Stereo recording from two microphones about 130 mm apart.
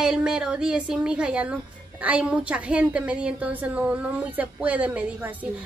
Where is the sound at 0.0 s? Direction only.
5° right (ahead or behind).